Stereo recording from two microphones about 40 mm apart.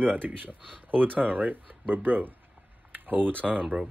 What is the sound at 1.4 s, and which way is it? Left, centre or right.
Speech, right.